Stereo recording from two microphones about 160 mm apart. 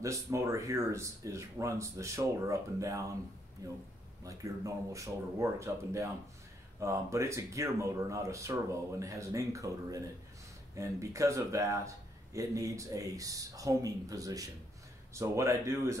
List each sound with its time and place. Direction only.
0.0 s speech: 20° right (ahead or behind)